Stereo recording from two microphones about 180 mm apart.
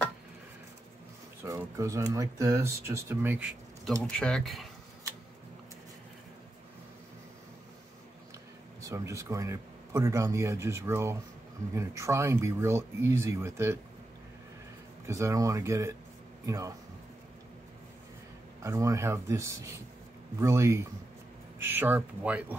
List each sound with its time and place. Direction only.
1.4 s speech: 15° right (ahead or behind)
8.8 s speech: 15° right (ahead or behind)
15.0 s speech: 15° right (ahead or behind)
18.6 s speech: 15° right (ahead or behind)